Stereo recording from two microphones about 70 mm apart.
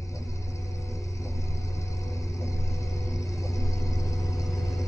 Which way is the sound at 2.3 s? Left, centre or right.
Left.